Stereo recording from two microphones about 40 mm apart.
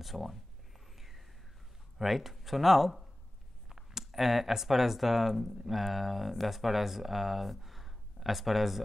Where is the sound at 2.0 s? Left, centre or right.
Centre.